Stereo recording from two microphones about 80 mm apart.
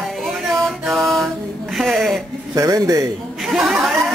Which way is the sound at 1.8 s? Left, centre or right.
Centre.